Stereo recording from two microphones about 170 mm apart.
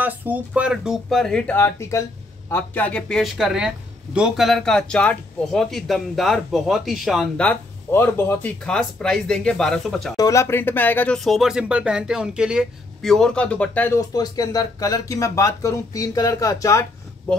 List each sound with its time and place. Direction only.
0.0 s speech: 10° right (ahead or behind)
10.1 s speech: 20° left (ahead or behind)
11.2 s speech: centre (ahead or behind); by 16.8 s 20° left (ahead or behind)